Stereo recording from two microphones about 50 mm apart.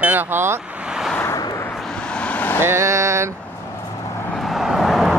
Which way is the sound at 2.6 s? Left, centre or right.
Right.